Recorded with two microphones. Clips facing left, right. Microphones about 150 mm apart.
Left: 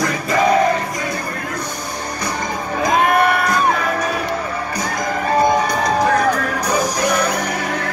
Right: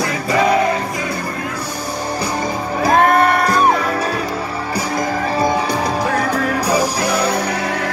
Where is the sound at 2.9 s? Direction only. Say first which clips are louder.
Right 2 dB; 10° left (ahead or behind).